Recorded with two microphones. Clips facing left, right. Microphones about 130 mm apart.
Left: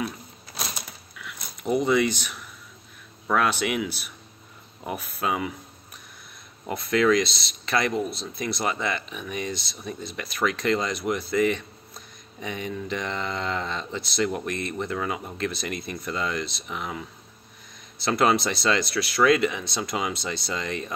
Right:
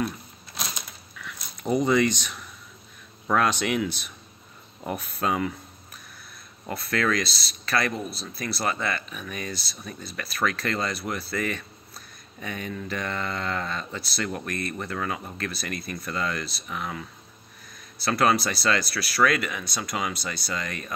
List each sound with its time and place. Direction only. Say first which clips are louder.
1.1 s a sound: right 1 dB; 5° left (ahead or behind)
3.3 s speech: even; 5° left (ahead or behind)
6.6 s speech: left 4 dB; 15° left (ahead or behind)